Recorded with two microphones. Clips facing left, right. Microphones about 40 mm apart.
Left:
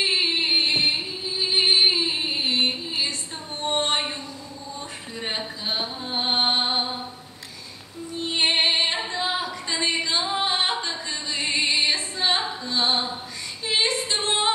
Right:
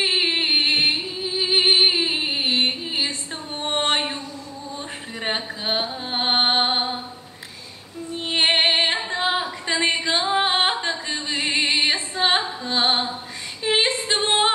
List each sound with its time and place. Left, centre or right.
0.1 s music: right; by 1.6 s centre
1.6 s music: right
5.2 s mantra: right
6.6 s mantra: right
8.2 s female singing: right
10.4 s singing: right
12.6 s music: right
13.7 s female singing: right